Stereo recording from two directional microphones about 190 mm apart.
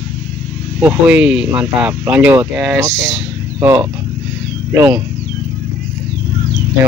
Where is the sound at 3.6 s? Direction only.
15° right (ahead or behind).